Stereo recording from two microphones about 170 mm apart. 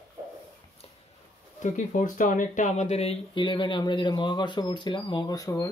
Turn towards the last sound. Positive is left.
turn(degrees=20)  # may be behind; listen again after turning